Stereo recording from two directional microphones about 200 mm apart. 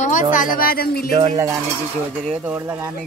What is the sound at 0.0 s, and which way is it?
A woman's voice, 40° left (ahead or behind).